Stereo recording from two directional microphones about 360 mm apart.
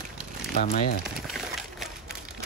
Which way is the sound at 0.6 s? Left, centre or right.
Left.